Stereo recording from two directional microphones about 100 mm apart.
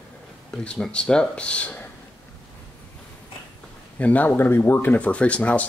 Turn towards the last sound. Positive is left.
turn(degrees=15)  # may be behind; listen again after turning